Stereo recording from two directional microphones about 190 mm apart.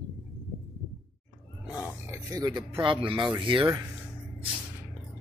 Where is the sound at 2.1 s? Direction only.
20° right (ahead or behind).